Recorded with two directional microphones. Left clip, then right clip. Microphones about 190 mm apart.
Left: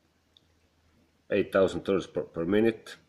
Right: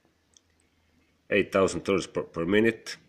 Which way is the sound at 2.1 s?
15° right (ahead or behind).